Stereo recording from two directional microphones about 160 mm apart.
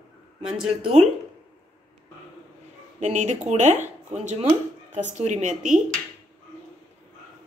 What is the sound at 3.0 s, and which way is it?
Speech, 45° right (ahead or behind).